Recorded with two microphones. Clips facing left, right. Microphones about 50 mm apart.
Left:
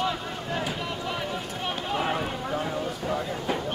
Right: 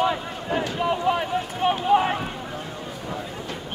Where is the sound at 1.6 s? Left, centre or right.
Right.